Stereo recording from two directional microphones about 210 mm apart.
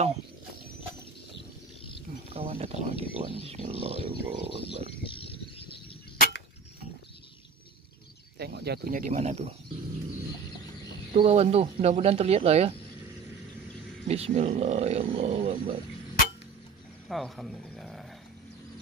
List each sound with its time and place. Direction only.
2.2 s speech: 30° right (ahead or behind)
5.0 s a sound: 25° left (ahead or behind)
8.4 s speech: 50° right (ahead or behind); by 9.5 s 30° right (ahead or behind)
11.1 s speech: 30° right (ahead or behind)
14.0 s speech: 30° right (ahead or behind)
17.1 s speech: centre (ahead or behind)